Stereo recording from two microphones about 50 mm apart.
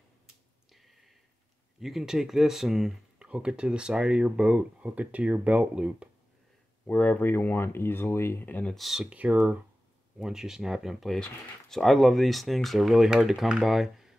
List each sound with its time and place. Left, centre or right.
0.7 s a sound: centre
1.8 s speech: centre
3.3 s speech: right
6.9 s speech: left
7.2 s speech: left
8.7 s speech: centre
9.1 s speech: right
10.1 s speech: centre